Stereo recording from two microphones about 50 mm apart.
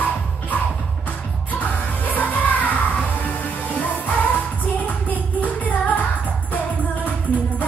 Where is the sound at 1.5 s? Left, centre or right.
Left.